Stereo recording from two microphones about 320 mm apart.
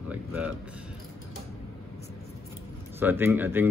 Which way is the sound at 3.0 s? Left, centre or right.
Centre.